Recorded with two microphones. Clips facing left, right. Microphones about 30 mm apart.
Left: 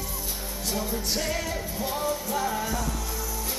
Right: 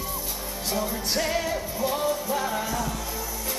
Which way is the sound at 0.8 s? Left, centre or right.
Centre.